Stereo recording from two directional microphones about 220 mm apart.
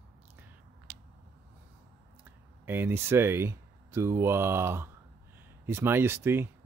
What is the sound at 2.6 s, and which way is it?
Speech, 10° right (ahead or behind).